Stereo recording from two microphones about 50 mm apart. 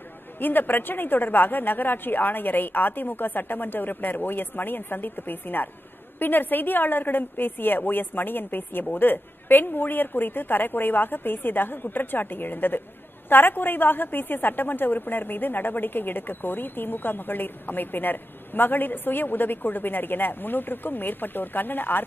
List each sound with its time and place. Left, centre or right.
0.4 s a woman's voice: left